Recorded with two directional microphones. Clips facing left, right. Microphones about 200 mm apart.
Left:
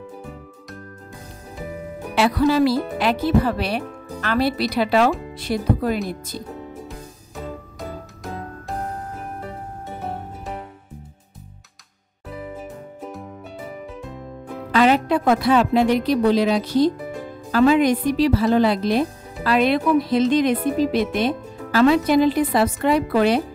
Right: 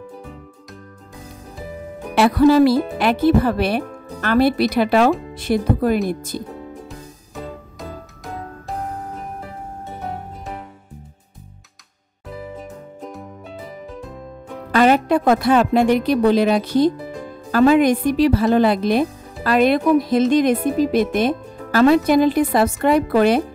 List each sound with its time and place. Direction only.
2.1 s speech: 50° right (ahead or behind)
6.9 s music: centre (ahead or behind)
12.5 s music: 5° left (ahead or behind)
14.7 s a woman's voice: 45° right (ahead or behind)